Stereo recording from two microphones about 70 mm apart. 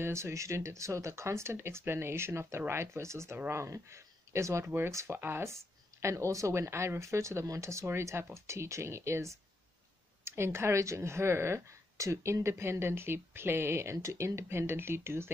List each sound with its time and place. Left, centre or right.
0.0 s speech: right
4.6 s speech: right